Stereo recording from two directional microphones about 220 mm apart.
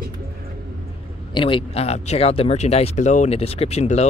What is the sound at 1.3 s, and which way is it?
Speech, 20° left (ahead or behind).